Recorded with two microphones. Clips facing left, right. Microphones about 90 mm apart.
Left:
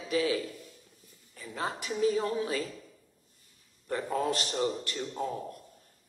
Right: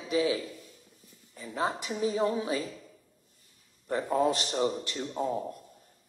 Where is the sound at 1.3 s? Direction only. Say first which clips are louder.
Right 4 dB; 20° right (ahead or behind).